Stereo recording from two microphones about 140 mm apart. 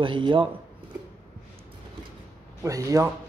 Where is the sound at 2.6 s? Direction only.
25° right (ahead or behind).